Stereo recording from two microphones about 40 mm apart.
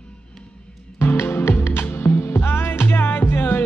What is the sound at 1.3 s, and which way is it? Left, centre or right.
Music, left.